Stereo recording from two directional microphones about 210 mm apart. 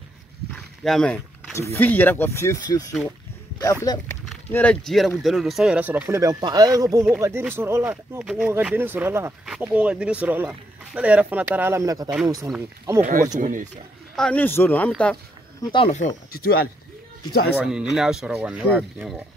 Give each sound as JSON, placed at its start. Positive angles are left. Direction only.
{"t": 0.5, "sound": "speech", "side_deg": 5}
{"t": 4.3, "sound": "speech", "side_deg": 5}
{"t": 13.4, "sound": "speech", "side_deg": -40}
{"t": 14.1, "sound": "speech", "side_deg": 5}
{"t": 15.7, "sound": "speech", "side_deg": 30}
{"t": 16.3, "sound": "speech", "side_deg": 45}
{"t": 17.6, "sound": "speech", "side_deg": -5}